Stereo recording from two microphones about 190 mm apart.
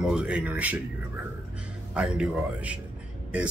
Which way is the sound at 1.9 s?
5° right (ahead or behind).